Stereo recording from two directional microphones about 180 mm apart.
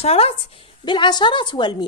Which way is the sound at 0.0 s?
35° left (ahead or behind).